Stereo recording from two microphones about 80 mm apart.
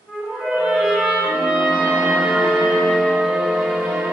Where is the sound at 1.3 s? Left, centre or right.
Centre.